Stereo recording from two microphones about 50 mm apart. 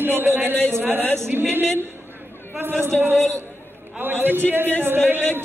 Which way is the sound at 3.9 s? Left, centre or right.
Right.